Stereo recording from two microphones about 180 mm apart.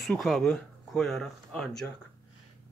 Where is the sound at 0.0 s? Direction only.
Centre (ahead or behind).